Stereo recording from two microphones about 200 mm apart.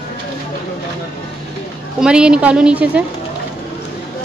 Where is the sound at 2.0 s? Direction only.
5° right (ahead or behind).